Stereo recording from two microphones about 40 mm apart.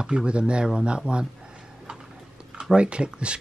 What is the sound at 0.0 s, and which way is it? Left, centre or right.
Speech, right.